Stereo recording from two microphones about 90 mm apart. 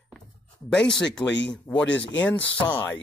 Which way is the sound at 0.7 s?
10° left (ahead or behind).